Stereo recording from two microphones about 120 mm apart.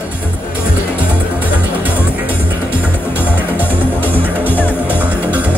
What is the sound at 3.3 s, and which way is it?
Music, 15° right (ahead or behind).